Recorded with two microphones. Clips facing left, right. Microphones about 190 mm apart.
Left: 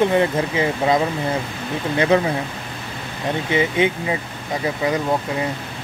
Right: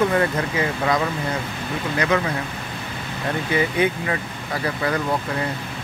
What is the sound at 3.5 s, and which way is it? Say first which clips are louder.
Speech: left 2 dB; 20° left (ahead or behind).